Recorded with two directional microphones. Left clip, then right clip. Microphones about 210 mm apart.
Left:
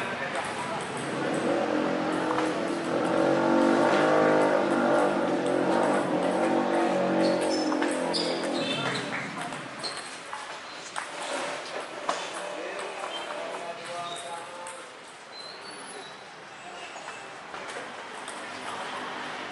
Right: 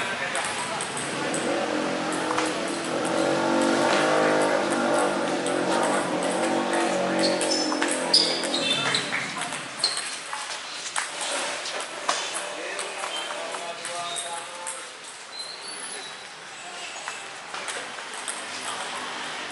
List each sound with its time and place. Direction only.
0.0 s vehicle: 10° left (ahead or behind)
5.5 s music: 15° left (ahead or behind)
7.5 s music: 20° left (ahead or behind)
7.8 s basketball bounce: 10° left (ahead or behind)
11.0 s a sound: 5° left (ahead or behind)
18.7 s a sound: 10° left (ahead or behind)